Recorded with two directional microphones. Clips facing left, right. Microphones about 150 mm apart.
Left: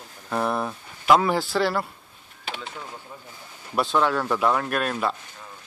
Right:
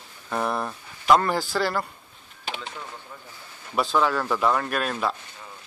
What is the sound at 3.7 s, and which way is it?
Speech, centre (ahead or behind).